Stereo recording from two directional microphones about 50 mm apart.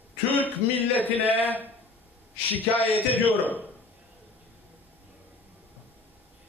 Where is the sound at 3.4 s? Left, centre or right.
Right.